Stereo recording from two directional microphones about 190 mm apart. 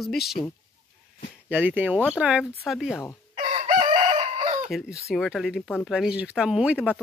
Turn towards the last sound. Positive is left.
turn(degrees=-5)  # may be behind; listen again after turning